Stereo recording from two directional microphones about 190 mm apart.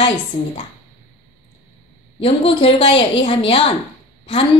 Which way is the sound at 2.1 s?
30° left (ahead or behind).